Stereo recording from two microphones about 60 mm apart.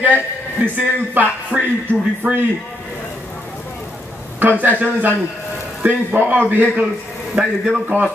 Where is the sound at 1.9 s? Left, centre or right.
Left.